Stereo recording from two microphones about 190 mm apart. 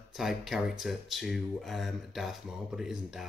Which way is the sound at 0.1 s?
Centre (ahead or behind).